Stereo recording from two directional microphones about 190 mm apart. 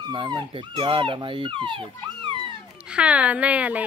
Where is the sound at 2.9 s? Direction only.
5° right (ahead or behind).